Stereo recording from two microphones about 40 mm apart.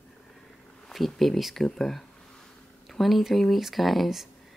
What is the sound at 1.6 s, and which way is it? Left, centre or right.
Speech, centre.